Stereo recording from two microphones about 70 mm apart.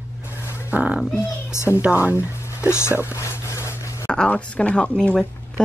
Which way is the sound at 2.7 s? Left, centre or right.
Left.